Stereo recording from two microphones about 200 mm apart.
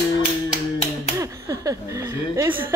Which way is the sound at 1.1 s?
15° right (ahead or behind).